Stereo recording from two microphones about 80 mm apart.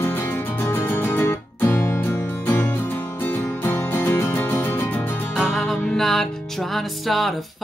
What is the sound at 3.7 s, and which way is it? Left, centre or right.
Music, left.